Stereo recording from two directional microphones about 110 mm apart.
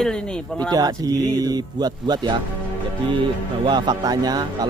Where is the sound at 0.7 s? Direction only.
35° right (ahead or behind).